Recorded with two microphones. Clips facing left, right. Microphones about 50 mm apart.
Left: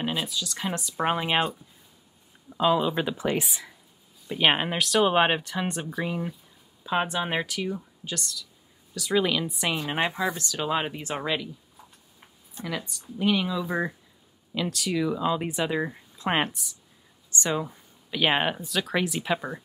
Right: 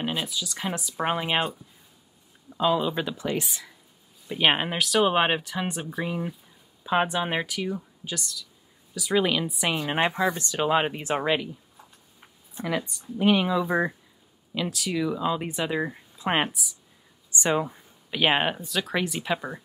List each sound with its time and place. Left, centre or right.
0.0 s speech: centre
2.5 s speech: centre
3.2 s speech: left
3.4 s speech: centre
4.3 s speech: centre
12.5 s speech: centre
14.5 s speech: centre
17.3 s speech: centre